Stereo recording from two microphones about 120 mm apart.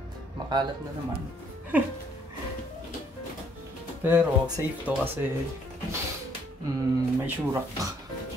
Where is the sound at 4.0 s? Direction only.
15° right (ahead or behind).